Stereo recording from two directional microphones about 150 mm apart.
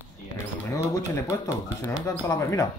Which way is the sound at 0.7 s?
20° left (ahead or behind).